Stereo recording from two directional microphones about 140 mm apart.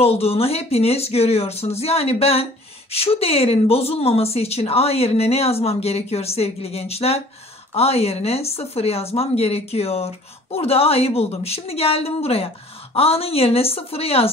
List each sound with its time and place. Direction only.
0.0 s speech: 45° left (ahead or behind)